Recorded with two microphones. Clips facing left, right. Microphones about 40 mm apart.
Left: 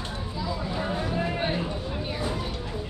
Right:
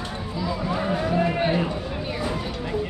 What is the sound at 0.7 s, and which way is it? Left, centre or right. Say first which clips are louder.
Run: right 6 dB; right.